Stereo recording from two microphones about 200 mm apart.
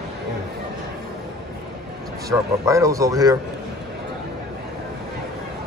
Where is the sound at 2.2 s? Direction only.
15° right (ahead or behind).